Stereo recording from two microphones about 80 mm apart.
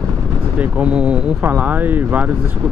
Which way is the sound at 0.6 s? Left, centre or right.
Centre.